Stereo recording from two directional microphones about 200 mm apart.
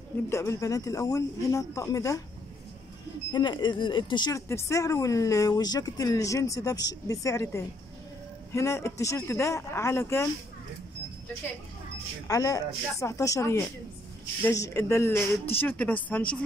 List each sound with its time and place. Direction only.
0.3 s speech: 15° left (ahead or behind)
3.3 s speech: 20° left (ahead or behind)
12.3 s speech: 15° left (ahead or behind)